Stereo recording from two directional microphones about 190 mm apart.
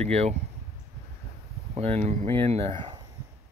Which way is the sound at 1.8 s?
35° right (ahead or behind).